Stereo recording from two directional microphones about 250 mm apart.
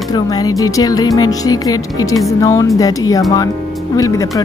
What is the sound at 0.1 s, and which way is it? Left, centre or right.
Speech, centre.